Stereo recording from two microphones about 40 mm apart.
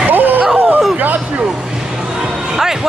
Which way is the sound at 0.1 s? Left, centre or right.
Right.